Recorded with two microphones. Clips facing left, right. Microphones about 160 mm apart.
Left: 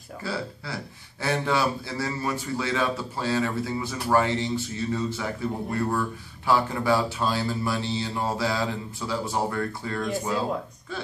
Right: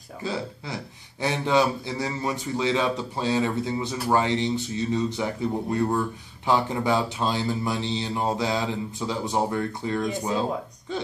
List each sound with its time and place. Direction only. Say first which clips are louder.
0.2 s a man's voice: right 2 dB; 20° right (ahead or behind)